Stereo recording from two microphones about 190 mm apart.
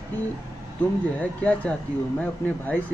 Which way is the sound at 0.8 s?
10° left (ahead or behind).